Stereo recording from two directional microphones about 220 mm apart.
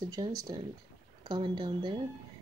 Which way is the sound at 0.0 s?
20° right (ahead or behind).